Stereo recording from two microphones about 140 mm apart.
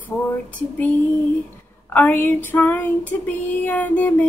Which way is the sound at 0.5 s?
10° left (ahead or behind).